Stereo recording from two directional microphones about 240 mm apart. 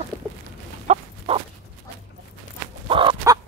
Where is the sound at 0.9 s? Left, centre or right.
Right.